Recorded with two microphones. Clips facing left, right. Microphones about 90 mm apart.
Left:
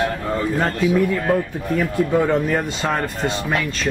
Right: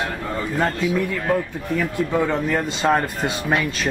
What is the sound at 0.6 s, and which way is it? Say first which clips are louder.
A man's voice: left 2 dB; 5° left (ahead or behind).